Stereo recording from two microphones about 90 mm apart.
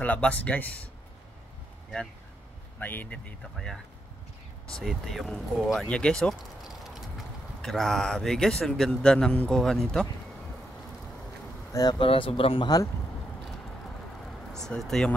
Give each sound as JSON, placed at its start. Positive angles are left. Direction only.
{"t": 0.0, "sound": "speech", "side_deg": 15}
{"t": 2.8, "sound": "speech", "side_deg": 20}
{"t": 3.5, "sound": "speech", "side_deg": 5}
{"t": 4.8, "sound": "speech", "side_deg": 5}
{"t": 6.6, "sound": "speech", "side_deg": -5}
{"t": 11.7, "sound": "speech", "side_deg": 45}
{"t": 12.0, "sound": "speech", "side_deg": 85}
{"t": 14.2, "sound": "a sound", "side_deg": 5}